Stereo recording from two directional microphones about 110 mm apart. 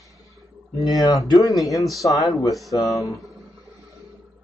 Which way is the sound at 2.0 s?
30° left (ahead or behind).